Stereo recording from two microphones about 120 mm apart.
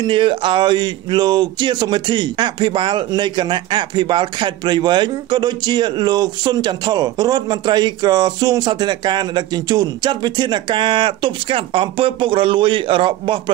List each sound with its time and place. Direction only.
0.0 s speech: 45° right (ahead or behind)